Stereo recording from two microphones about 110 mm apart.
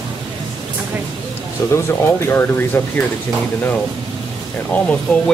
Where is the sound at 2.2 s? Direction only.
20° left (ahead or behind).